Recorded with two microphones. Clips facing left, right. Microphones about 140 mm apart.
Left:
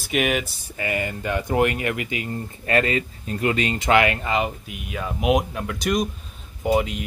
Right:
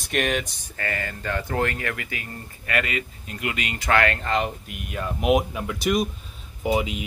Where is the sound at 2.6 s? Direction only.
30° left (ahead or behind).